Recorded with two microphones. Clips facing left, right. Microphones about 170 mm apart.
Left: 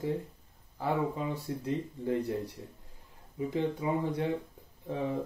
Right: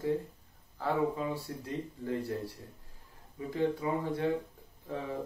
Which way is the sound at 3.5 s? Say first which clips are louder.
Right 1 dB; 20° left (ahead or behind).